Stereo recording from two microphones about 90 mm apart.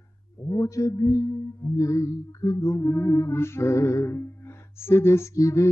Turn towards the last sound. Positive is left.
turn(degrees=35)  # may be behind; listen again after turning